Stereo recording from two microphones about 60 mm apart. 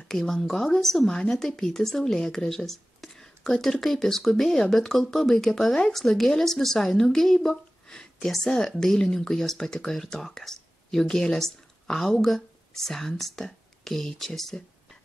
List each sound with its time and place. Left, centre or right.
0.1 s speech: centre